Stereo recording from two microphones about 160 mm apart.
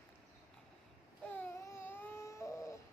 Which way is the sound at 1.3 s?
10° left (ahead or behind).